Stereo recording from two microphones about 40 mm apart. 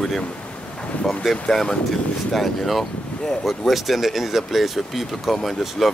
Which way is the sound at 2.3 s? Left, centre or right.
Centre.